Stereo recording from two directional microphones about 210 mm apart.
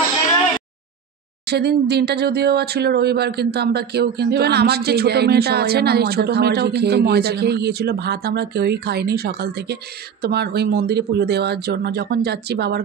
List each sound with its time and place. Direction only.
1.5 s speech: 50° right (ahead or behind)